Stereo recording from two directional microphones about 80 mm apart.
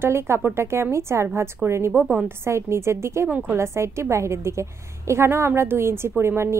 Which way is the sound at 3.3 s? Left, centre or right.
Right.